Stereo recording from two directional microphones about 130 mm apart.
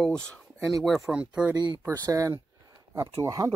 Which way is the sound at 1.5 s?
35° right (ahead or behind).